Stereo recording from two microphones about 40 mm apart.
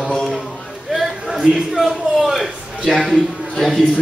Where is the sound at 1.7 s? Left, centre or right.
Centre.